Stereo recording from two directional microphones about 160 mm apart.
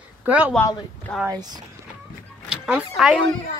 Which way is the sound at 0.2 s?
10° right (ahead or behind).